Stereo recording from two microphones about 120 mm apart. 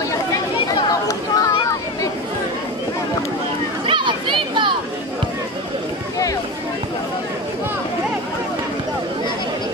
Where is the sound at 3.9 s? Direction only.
40° right (ahead or behind).